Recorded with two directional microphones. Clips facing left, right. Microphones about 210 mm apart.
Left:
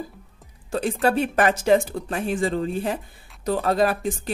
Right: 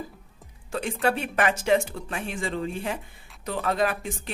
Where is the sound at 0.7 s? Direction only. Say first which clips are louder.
Left 4 dB; 35° left (ahead or behind).